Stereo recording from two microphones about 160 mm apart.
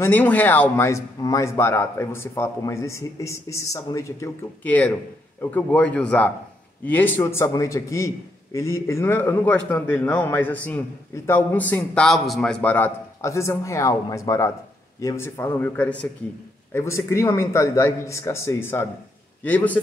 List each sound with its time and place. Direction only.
0.0 s a man's voice: 10° left (ahead or behind)